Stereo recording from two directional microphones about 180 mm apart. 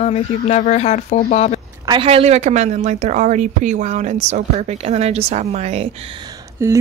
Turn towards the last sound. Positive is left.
turn(degrees=-15)  # may be behind; listen again after turning